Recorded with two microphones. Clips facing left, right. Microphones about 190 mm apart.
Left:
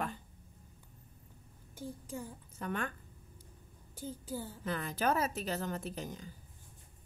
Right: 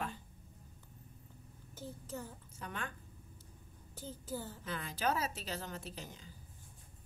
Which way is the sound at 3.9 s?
10° left (ahead or behind).